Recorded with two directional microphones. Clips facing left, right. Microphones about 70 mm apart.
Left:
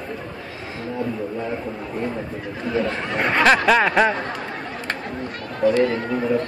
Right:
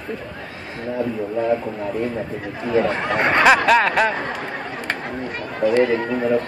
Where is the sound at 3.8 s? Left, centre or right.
Centre.